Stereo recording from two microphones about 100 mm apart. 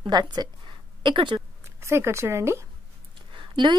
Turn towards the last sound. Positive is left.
turn(degrees=-50)  # may be behind; listen again after turning